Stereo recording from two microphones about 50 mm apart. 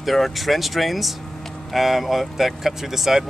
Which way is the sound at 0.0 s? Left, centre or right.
Centre.